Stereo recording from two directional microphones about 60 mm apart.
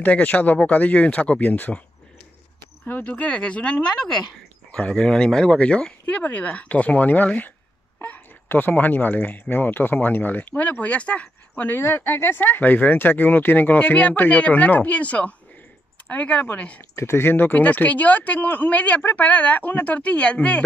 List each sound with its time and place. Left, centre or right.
0.0 s speech: left
3.0 s speech: left
11.5 s speech: left
16.9 s speech: left